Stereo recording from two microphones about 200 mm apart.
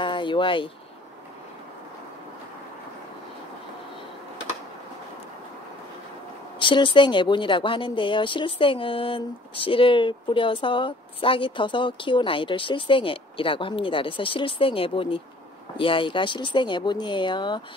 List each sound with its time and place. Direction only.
0.0 s speech: 25° left (ahead or behind)
6.6 s speech: 25° left (ahead or behind)